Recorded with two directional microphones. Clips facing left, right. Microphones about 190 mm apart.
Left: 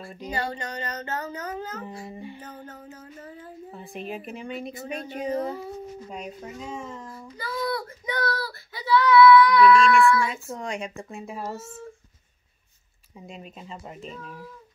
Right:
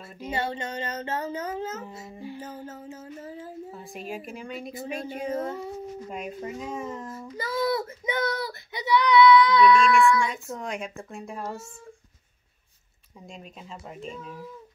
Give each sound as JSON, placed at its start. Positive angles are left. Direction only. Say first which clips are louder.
{"t": 0.3, "sound": "child singing", "louder": "right 1 dB", "side_deg": -25}
{"t": 2.0, "sound": "speech", "louder": "right 1 dB", "side_deg": 0}
{"t": 2.6, "sound": "child singing", "louder": "right 3 dB", "side_deg": -25}
{"t": 3.7, "sound": "speech", "louder": "left 5 dB", "side_deg": 0}
{"t": 7.3, "sound": "child singing", "louder": "right 3 dB", "side_deg": -20}
{"t": 10.1, "sound": "speech", "louder": "left 1 dB", "side_deg": 0}
{"t": 13.3, "sound": "speech", "louder": "left 2 dB", "side_deg": 0}